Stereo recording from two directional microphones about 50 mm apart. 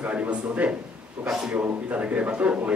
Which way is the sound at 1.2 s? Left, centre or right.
Centre.